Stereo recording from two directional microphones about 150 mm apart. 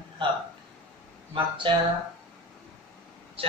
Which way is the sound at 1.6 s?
30° right (ahead or behind).